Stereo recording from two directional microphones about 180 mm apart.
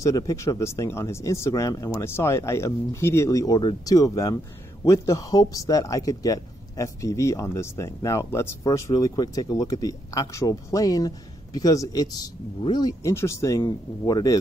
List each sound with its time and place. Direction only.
0.0 s a man's voice: 20° left (ahead or behind)